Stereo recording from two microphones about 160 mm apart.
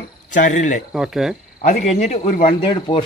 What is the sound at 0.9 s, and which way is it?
Speech, centre (ahead or behind).